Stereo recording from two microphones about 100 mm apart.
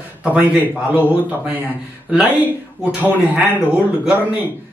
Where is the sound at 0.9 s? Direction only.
15° right (ahead or behind).